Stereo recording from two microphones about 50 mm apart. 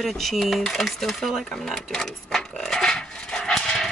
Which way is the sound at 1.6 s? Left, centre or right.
Centre.